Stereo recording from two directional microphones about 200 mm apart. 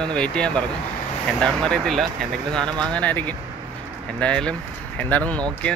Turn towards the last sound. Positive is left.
turn(degrees=5)  # may be behind; listen again after turning